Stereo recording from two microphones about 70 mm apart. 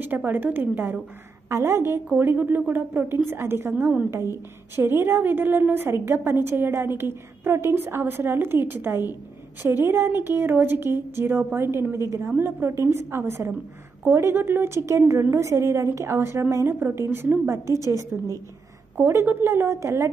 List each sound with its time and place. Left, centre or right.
0.0 s a woman's voice: right
1.5 s a woman's voice: right
3.7 s a woman's voice: right
4.7 s a woman's voice: right